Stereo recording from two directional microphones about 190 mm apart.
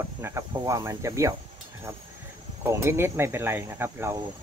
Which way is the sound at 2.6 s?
15° right (ahead or behind).